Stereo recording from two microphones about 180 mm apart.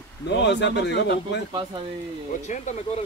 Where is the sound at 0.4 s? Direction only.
80° left.